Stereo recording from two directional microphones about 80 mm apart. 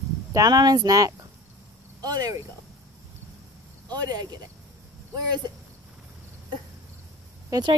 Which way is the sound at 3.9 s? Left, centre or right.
Right.